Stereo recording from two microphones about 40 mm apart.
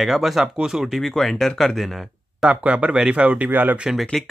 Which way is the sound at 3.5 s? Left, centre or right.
Right.